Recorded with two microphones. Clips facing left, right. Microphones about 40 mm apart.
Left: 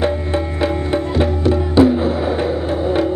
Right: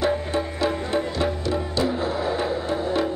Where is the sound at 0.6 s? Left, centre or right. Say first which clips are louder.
Left 5 dB; left.